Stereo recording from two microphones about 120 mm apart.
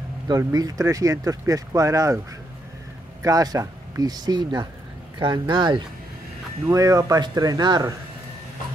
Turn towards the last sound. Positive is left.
turn(degrees=-35)  # may be behind; listen again after turning